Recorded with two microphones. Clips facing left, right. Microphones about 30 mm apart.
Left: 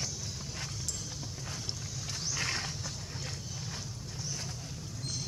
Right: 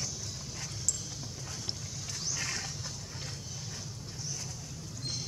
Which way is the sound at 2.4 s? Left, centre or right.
Left.